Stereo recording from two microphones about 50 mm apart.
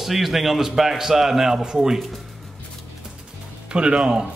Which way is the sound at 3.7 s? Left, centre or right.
Centre.